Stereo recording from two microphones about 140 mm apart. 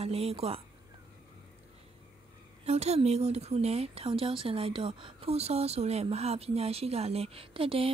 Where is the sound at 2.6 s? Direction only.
50° right (ahead or behind).